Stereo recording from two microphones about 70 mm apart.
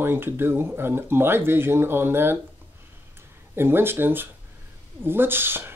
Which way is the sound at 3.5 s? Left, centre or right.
Right.